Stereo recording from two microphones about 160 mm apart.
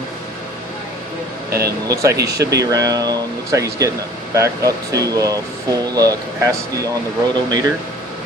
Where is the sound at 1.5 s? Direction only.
75° right (ahead or behind).